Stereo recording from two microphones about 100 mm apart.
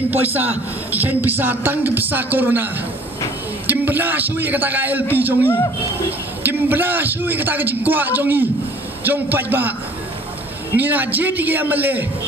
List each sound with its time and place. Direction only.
0.1 s a man's voice: 20° right (ahead or behind)
10.8 s a man's voice: 15° right (ahead or behind)